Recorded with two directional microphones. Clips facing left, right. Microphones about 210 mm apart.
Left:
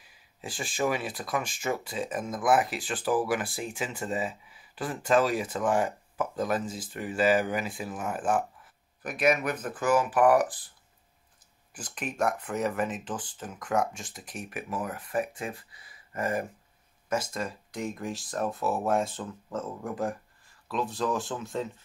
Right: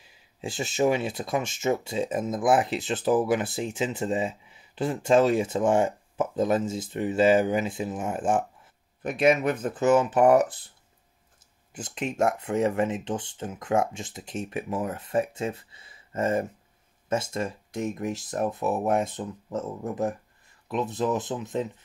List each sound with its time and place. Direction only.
0.0 s speech: 25° right (ahead or behind)
11.7 s speech: 25° right (ahead or behind)